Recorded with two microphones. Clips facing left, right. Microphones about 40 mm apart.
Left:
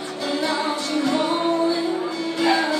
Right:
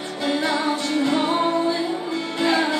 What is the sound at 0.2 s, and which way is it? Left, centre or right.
Music, right.